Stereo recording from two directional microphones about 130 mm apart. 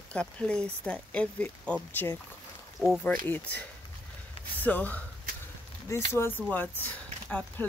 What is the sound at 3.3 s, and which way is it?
Speech, 10° left (ahead or behind).